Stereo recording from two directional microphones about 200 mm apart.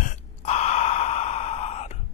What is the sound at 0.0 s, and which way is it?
Gasp, 35° left (ahead or behind).